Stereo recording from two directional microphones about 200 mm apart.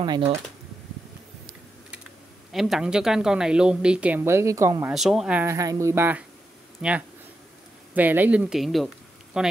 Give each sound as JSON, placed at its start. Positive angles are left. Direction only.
{"t": 0.0, "sound": "speech", "side_deg": -20}
{"t": 2.5, "sound": "speech", "side_deg": 0}
{"t": 4.9, "sound": "speech", "side_deg": 0}